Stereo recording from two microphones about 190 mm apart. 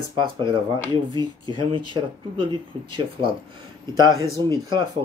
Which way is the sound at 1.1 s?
25° right (ahead or behind).